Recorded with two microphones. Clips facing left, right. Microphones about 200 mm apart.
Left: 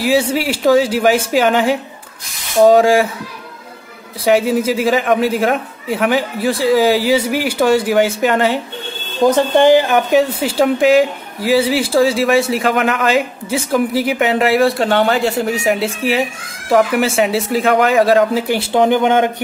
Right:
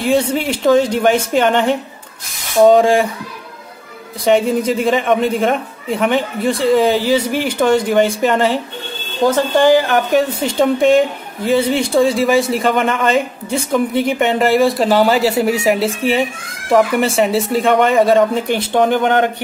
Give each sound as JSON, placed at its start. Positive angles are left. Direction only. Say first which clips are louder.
{"t": 0.0, "sound": "speech", "louder": "even", "side_deg": 5}
{"t": 4.2, "sound": "speech", "louder": "even", "side_deg": 5}
{"t": 9.3, "sound": "speech", "louder": "left 1 dB", "side_deg": 20}
{"t": 10.1, "sound": "speech", "louder": "left 1 dB", "side_deg": 5}